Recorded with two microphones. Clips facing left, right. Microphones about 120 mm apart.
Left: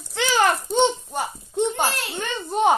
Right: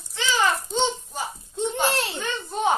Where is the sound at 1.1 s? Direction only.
60° left (ahead or behind).